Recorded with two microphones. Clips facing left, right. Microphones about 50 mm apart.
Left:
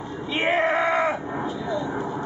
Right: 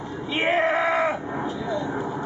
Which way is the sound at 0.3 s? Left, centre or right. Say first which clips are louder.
Even; centre.